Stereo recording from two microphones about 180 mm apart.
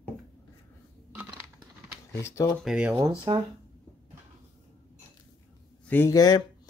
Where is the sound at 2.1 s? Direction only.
15° left (ahead or behind).